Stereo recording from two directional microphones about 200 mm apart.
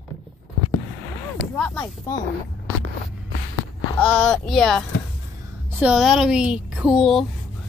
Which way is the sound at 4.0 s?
5° left (ahead or behind).